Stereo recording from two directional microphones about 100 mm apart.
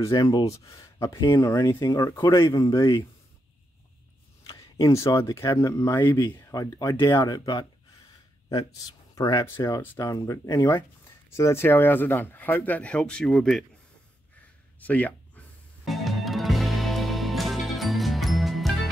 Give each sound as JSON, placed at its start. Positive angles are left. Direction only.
{"t": 0.0, "sound": "speech", "side_deg": 35}
{"t": 4.5, "sound": "speech", "side_deg": 35}
{"t": 7.0, "sound": "speech", "side_deg": 25}
{"t": 7.2, "sound": "speech", "side_deg": 40}
{"t": 9.1, "sound": "speech", "side_deg": 45}
{"t": 9.8, "sound": "speech", "side_deg": 30}
{"t": 14.8, "sound": "a sound", "side_deg": 15}
{"t": 15.8, "sound": "music", "side_deg": 0}